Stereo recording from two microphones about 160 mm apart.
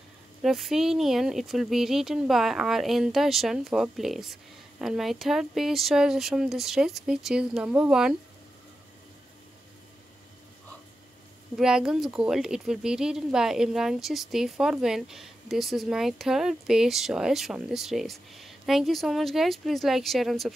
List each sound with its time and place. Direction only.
0.4 s speech: centre (ahead or behind)
11.5 s speech: 5° right (ahead or behind)